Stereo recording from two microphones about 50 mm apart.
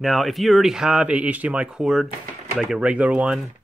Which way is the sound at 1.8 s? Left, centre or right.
Centre.